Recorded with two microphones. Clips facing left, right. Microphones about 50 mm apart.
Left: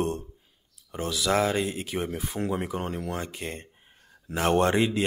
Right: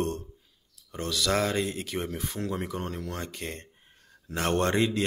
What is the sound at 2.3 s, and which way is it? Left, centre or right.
Speech, centre.